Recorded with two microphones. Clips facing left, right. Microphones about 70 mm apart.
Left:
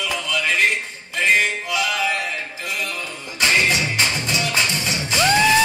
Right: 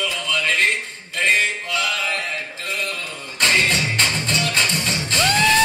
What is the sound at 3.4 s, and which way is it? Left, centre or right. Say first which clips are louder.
Music: even; centre.